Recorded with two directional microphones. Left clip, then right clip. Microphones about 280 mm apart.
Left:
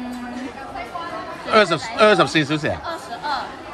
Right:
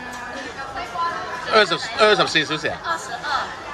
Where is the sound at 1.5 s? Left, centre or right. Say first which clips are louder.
Left 1 dB; left.